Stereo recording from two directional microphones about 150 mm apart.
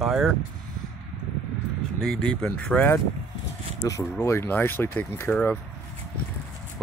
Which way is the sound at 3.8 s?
25° left (ahead or behind).